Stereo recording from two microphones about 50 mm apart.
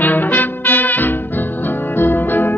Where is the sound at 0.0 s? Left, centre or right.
Left.